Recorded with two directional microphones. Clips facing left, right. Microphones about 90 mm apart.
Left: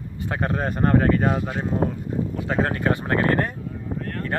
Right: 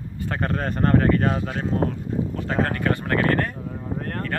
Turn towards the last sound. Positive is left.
turn(degrees=20)  # may be behind; listen again after turning